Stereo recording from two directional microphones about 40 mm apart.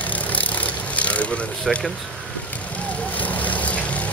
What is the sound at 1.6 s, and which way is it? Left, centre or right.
Speech, left.